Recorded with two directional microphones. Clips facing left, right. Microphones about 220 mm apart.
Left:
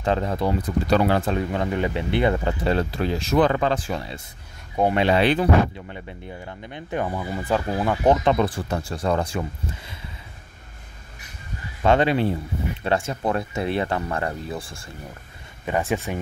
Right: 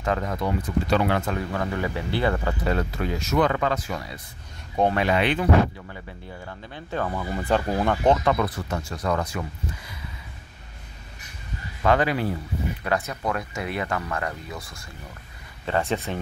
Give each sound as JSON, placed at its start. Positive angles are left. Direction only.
{"t": 0.0, "sound": "speech", "side_deg": 30}
{"t": 1.5, "sound": "speech", "side_deg": 20}
{"t": 6.4, "sound": "speech", "side_deg": 20}
{"t": 8.2, "sound": "speech", "side_deg": 25}
{"t": 11.8, "sound": "speech", "side_deg": 25}
{"t": 15.9, "sound": "speech", "side_deg": 15}